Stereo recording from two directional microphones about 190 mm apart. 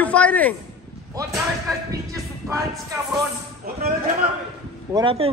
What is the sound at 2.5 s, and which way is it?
Speech, 15° right (ahead or behind).